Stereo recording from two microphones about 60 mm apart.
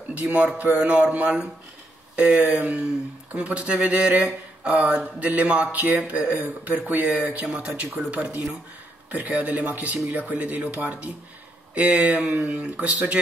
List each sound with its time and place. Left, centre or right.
0.1 s speech: right
2.4 s speech: right